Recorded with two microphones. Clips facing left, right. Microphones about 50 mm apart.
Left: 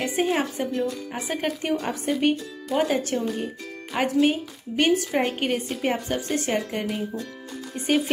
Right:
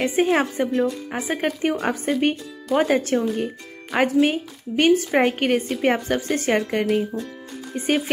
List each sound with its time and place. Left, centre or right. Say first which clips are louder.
0.0 s a woman's voice: right 4 dB; right
0.8 s speech: right 4 dB; right
1.3 s a woman's voice: right 3 dB; right
2.7 s speech: right 3 dB; centre
3.1 s a woman's voice: right 5 dB; right